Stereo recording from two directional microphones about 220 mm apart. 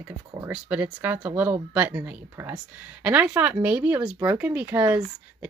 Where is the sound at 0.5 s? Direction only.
5° right (ahead or behind).